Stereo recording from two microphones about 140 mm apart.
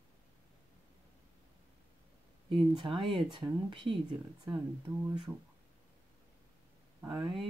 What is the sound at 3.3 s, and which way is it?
Speech, 35° right (ahead or behind).